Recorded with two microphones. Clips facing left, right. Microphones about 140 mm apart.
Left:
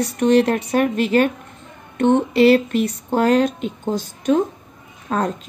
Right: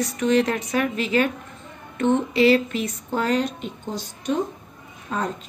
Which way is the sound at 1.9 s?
65° left (ahead or behind).